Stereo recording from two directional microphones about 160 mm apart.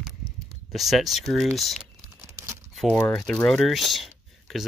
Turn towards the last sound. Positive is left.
turn(degrees=0)  # may be behind; listen again after turning